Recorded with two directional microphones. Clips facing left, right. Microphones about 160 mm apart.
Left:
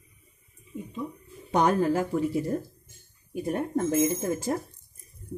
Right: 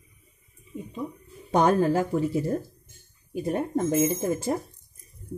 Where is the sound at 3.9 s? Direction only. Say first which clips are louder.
Right 1 dB; 25° right (ahead or behind).